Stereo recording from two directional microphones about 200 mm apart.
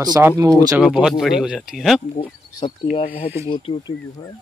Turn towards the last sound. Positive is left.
turn(degrees=25)  # may be behind; listen again after turning